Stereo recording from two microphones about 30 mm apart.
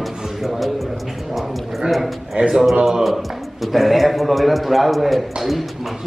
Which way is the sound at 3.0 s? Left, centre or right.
Centre.